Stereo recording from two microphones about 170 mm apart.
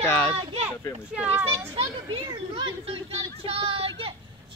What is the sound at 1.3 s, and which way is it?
Speech, 10° right (ahead or behind).